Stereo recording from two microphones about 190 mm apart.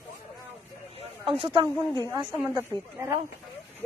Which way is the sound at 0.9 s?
30° right (ahead or behind).